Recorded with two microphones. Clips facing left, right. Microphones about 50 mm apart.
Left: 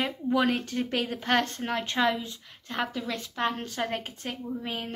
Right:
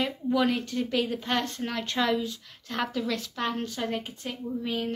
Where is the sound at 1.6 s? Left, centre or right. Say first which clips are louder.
Left 2 dB; left.